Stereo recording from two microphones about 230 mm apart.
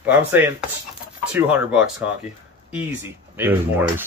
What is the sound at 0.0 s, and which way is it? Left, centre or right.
Speech, centre.